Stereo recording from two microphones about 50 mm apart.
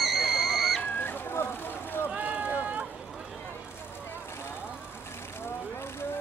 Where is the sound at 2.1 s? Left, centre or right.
Right.